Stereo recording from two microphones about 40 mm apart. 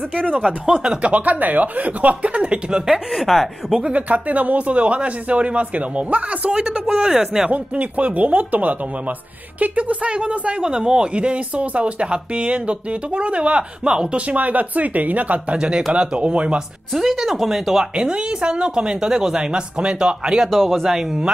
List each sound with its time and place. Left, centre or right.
0.1 s a man's voice: right
2.9 s speech: centre
3.8 s a man's voice: right
6.5 s speech: right
7.5 s a man's voice: right
10.6 s speech: centre
14.2 s a man's voice: right
15.5 s speech: right
16.9 s speech: centre
17.9 s speech: right
20.4 s a man's voice: centre
20.8 s a man's voice: centre